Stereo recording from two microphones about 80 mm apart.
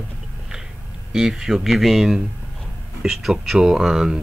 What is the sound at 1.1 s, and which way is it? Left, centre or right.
Speech, centre.